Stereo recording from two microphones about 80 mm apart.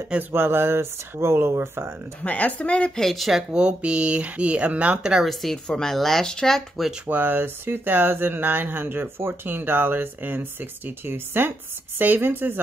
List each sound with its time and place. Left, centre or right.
0.1 s speech: right
2.2 s speech: centre
3.0 s speech: centre
5.3 s speech: centre
7.1 s speech: right